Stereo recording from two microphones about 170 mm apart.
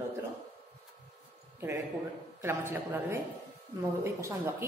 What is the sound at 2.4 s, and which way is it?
A woman's voice, 10° right (ahead or behind).